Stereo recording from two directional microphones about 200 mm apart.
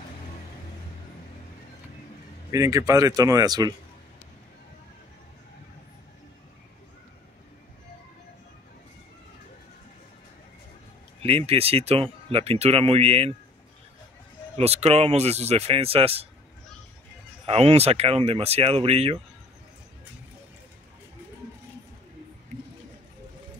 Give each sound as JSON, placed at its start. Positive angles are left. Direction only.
{"t": 2.5, "sound": "speech", "side_deg": -15}
{"t": 11.2, "sound": "speech", "side_deg": -30}
{"t": 14.6, "sound": "speech", "side_deg": -30}
{"t": 17.5, "sound": "speech", "side_deg": -30}